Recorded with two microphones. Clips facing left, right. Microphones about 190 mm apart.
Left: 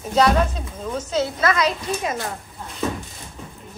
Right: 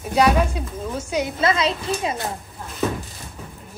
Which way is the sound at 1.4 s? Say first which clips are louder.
Even; 25° right (ahead or behind).